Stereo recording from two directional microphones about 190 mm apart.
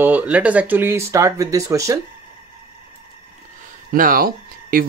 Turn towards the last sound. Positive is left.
turn(degrees=-50)  # may be behind; listen again after turning